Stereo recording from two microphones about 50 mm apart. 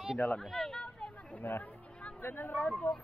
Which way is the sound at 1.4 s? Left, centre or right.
Left.